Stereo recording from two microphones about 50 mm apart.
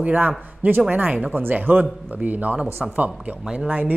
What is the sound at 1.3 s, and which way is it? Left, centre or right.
Speech, right.